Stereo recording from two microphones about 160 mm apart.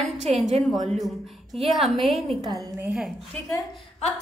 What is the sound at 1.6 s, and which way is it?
Speech, centre (ahead or behind).